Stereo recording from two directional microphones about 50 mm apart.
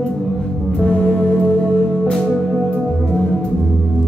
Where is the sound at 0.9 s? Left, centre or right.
Centre.